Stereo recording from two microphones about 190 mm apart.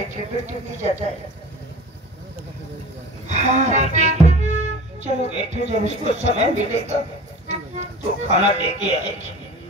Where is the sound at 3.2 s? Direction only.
35° right (ahead or behind).